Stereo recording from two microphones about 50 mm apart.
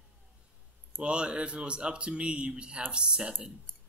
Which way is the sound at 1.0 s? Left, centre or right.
Centre.